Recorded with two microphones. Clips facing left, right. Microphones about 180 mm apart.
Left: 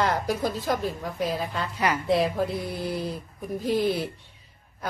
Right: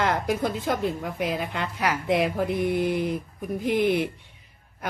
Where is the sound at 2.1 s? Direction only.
20° right (ahead or behind).